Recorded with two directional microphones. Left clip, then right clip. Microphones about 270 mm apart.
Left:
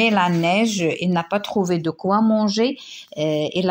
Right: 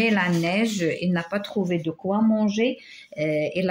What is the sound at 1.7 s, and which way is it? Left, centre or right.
Speech, left.